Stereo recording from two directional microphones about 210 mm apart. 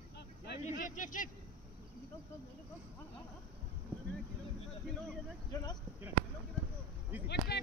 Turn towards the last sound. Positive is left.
turn(degrees=50)  # may be behind; listen again after turning